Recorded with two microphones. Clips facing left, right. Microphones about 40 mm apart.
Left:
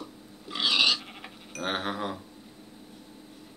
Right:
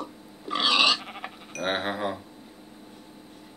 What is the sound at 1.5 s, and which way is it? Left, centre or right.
Speech, centre.